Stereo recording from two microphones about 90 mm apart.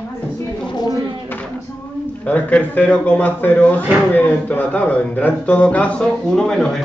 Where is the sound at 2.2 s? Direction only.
15° left (ahead or behind).